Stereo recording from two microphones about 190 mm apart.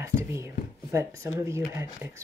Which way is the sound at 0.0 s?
15° right (ahead or behind).